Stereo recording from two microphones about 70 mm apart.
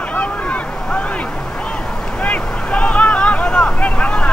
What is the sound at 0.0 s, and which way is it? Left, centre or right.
Boat, centre.